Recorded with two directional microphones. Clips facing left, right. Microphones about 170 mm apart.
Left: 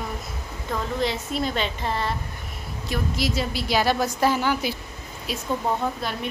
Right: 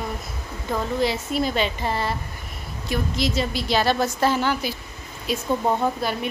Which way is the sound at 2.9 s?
5° left (ahead or behind).